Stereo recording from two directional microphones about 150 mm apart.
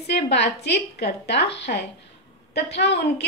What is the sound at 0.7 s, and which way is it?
A woman's voice, 90° left.